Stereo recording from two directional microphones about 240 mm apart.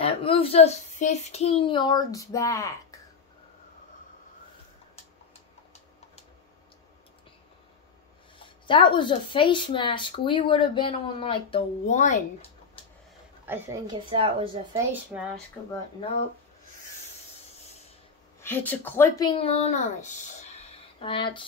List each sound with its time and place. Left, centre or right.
0.0 s speech: left
8.4 s speech: left
13.5 s speech: centre
18.4 s speech: centre